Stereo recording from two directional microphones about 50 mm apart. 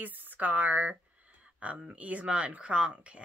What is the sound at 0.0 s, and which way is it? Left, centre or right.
Speech, right.